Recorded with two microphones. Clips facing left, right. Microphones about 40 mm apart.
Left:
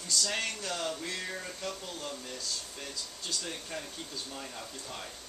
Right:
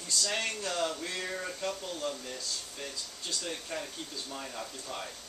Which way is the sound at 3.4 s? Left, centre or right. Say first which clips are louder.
Right 2 dB; centre.